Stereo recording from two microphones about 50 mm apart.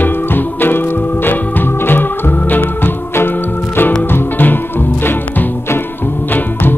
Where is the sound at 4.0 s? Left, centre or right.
Left.